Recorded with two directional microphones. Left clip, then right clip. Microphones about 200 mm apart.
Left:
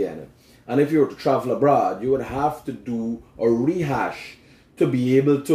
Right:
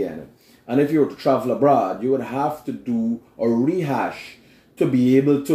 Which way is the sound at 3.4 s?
10° right (ahead or behind).